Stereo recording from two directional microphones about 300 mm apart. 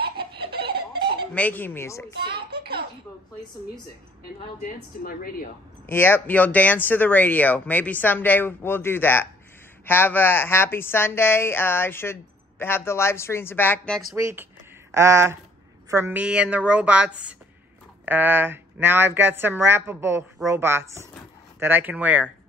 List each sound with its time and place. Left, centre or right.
0.4 s chicken: right
1.3 s a woman's voice: centre
2.1 s a sound: right
5.0 s a woman's voice: left
5.9 s a woman's voice: centre
14.1 s a woman's voice: centre